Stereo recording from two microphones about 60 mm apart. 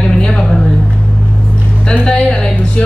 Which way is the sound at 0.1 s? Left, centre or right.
Centre.